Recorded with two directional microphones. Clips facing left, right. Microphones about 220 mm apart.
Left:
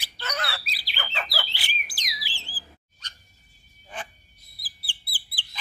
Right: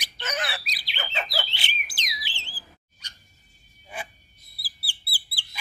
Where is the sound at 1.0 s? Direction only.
20° right (ahead or behind).